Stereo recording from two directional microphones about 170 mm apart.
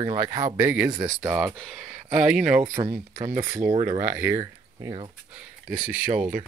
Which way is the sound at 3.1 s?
50° right (ahead or behind).